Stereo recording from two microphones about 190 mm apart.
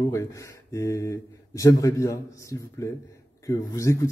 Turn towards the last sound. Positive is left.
turn(degrees=15)  # may be behind; listen again after turning